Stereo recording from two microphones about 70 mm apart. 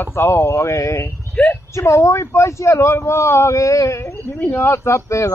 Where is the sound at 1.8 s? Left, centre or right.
Left.